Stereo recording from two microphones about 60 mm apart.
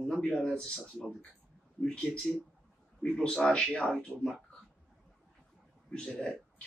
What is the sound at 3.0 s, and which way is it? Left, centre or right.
A man's voice, centre.